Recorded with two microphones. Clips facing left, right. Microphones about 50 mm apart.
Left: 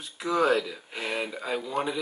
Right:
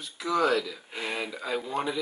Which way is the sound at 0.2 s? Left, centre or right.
Left.